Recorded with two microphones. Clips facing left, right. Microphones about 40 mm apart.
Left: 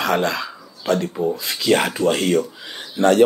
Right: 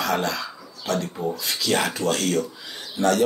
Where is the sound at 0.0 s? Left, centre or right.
Left.